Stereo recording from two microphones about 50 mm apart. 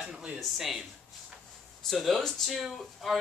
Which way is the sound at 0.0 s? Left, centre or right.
Centre.